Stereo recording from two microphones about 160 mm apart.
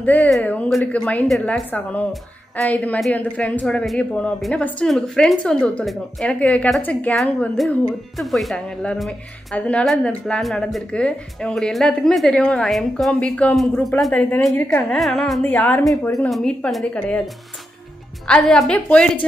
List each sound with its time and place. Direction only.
0.0 s speech: 10° left (ahead or behind)
14.5 s a woman's voice: 20° left (ahead or behind)
14.9 s speech: centre (ahead or behind)
15.8 s speech: centre (ahead or behind)
18.2 s speech: 5° left (ahead or behind)